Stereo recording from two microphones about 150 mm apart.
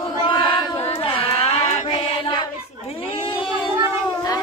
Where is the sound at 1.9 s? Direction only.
35° left (ahead or behind).